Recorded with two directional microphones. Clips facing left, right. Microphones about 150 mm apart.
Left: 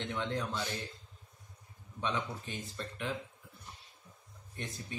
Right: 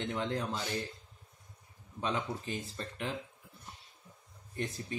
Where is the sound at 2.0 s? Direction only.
35° right (ahead or behind).